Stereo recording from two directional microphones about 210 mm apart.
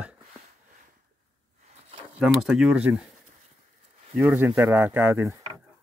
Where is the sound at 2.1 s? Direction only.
5° right (ahead or behind).